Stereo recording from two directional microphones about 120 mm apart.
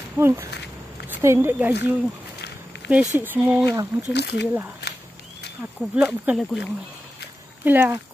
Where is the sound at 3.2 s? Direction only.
10° right (ahead or behind).